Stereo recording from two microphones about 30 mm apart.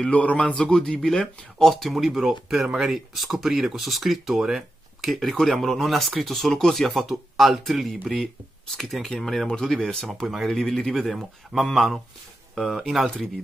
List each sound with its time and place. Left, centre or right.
0.1 s speech: left
0.7 s speech: left; by 2.1 s centre
2.1 s speech: centre
5.0 s speech: centre
6.5 s speech: centre
7.1 s speech: centre
8.0 s speech: centre
10.2 s speech: centre
10.5 s speech: centre
11.5 s speech: centre
12.8 s speech: centre